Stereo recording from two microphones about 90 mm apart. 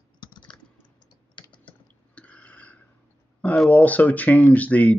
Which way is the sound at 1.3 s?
65° left (ahead or behind).